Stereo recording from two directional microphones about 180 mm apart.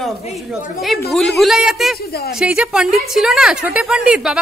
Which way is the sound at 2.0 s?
60° left (ahead or behind).